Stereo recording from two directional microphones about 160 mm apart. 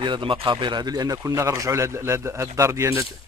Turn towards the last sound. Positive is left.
turn(degrees=-20)  # may be behind; listen again after turning